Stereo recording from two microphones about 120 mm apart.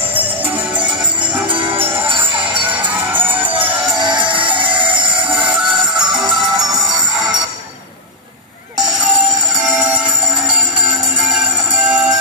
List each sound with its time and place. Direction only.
1.5 s jingle bell: 50° right (ahead or behind)
3.1 s music: 15° right (ahead or behind)
3.5 s vehicle: 40° right (ahead or behind)
4.6 s a sound: 45° right (ahead or behind)
8.7 s a sound: 5° right (ahead or behind)
9.6 s music: 5° right (ahead or behind)
11.2 s music: 5° right (ahead or behind)